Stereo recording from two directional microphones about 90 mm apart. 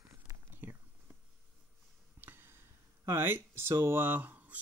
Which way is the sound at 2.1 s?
25° right (ahead or behind).